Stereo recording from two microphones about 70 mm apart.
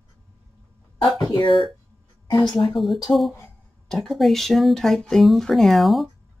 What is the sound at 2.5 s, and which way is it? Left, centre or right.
Speech, centre.